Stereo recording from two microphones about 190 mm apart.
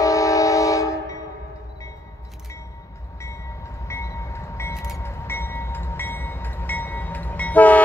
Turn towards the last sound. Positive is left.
turn(degrees=10)  # may be behind; listen again after turning